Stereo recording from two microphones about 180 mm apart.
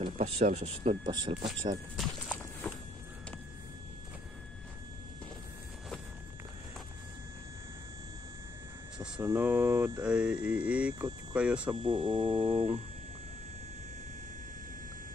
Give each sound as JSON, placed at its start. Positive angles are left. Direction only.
{"t": 0.0, "sound": "speech", "side_deg": -35}
{"t": 1.3, "sound": "speech", "side_deg": -40}
{"t": 2.0, "sound": "a sound", "side_deg": 0}
{"t": 8.9, "sound": "a sound", "side_deg": -5}
{"t": 9.3, "sound": "mantra", "side_deg": -10}
{"t": 11.7, "sound": "speech", "side_deg": -25}